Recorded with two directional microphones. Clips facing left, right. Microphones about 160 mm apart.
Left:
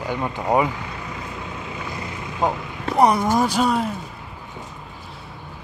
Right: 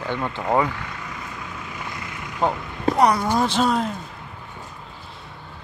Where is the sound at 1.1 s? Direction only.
25° left (ahead or behind).